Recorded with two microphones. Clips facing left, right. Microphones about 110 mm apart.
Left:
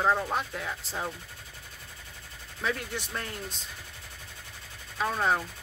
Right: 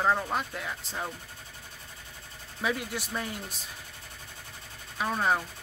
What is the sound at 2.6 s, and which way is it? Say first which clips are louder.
Speech: right 1 dB; 10° right (ahead or behind).